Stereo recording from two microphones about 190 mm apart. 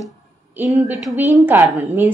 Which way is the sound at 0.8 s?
Centre (ahead or behind).